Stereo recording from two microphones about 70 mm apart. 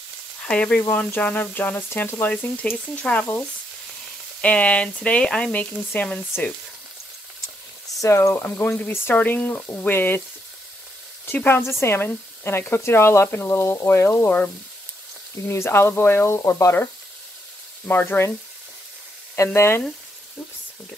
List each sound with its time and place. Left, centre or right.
0.5 s speech: centre
0.7 s speech: left
8.0 s frying: left
8.5 s speech: left
11.2 s speech: left
14.2 s speech: left
15.4 s speech: left
17.8 s speech: left
19.3 s speech: left